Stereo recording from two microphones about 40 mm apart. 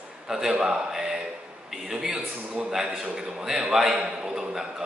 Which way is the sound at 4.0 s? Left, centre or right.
Centre.